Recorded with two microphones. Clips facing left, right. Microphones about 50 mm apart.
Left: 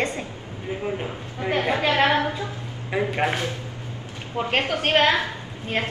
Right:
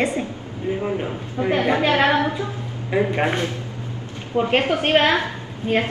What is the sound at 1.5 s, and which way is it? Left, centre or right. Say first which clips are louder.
Speech: right 3 dB; right.